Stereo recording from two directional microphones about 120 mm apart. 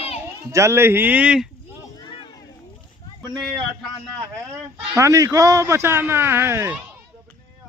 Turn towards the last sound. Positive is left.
turn(degrees=-20)  # may be behind; listen again after turning